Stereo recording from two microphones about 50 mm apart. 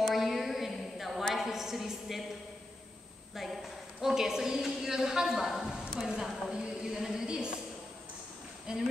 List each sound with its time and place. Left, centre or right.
0.0 s a sound: centre
4.0 s a woman's voice: centre
8.7 s speech: centre